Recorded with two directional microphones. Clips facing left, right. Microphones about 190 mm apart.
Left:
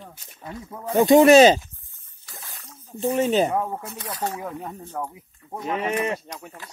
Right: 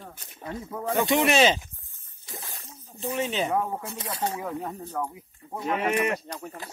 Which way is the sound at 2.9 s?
40° left (ahead or behind).